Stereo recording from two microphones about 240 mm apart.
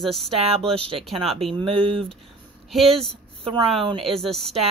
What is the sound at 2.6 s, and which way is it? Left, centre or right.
Speech, centre.